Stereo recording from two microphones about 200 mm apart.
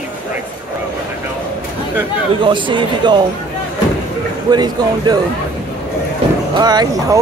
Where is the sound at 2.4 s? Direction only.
25° right (ahead or behind).